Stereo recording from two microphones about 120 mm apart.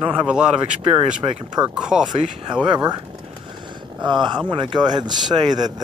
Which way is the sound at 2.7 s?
35° right (ahead or behind).